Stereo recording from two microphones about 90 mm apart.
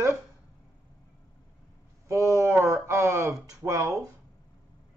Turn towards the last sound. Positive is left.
turn(degrees=-40)  # may be behind; listen again after turning